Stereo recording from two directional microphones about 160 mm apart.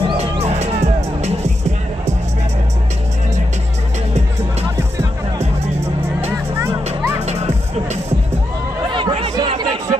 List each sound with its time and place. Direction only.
0.0 s music: 40° right (ahead or behind)
7.2 s music: 40° right (ahead or behind)
8.8 s chatter: 30° right (ahead or behind)